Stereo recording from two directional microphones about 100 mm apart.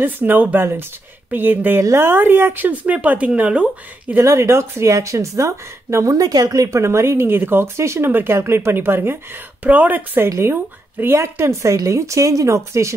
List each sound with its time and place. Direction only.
0.0 s speech: 20° right (ahead or behind)
4.2 s speech: 30° right (ahead or behind)